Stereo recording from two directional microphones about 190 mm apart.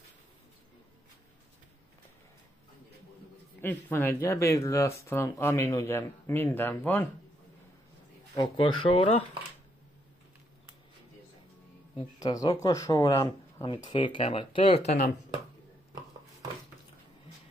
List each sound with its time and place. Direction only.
3.6 s speech: 10° left (ahead or behind)
8.4 s speech: 25° left (ahead or behind)
12.2 s speech: 20° left (ahead or behind); by 15.1 s 40° left (ahead or behind)